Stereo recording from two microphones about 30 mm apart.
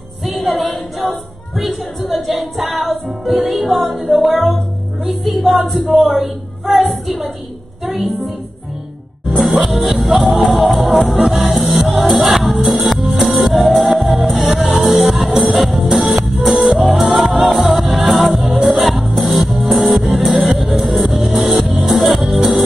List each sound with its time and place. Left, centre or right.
0.2 s a capella: centre
1.6 s music: centre
5.7 s a woman's voice: centre
7.8 s music: centre
9.4 s music: centre
10.4 s a woman's voice: centre
11.2 s music: centre
15.4 s music: centre